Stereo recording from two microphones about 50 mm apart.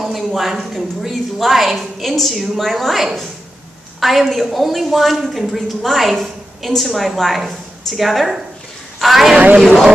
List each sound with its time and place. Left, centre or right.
0.0 s a woman's voice: centre
9.4 s speech: right